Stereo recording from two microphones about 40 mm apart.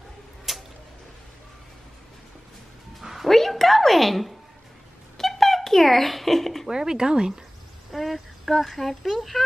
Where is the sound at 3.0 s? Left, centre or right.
Centre.